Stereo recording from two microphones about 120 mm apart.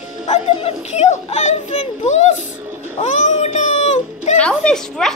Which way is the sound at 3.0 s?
75° left (ahead or behind).